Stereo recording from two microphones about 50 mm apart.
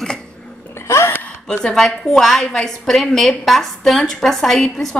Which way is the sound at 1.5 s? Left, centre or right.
Centre.